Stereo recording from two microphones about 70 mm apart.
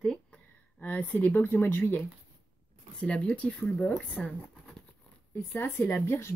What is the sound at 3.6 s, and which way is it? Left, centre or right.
Speech, centre.